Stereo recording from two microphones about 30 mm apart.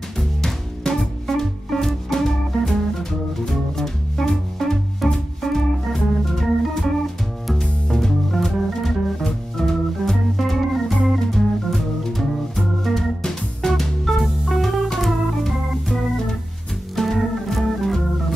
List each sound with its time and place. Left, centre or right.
0.8 s music: left
1.2 s music: centre
5.4 s organ: centre
7.4 s music: centre
11.0 s organ: centre
13.6 s music: left
14.1 s music: centre
15.0 s organ: centre